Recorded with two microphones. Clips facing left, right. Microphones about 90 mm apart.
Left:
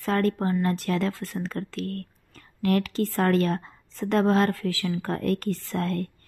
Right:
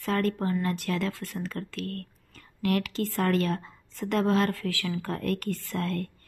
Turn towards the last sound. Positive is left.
turn(degrees=35)  # may be behind; listen again after turning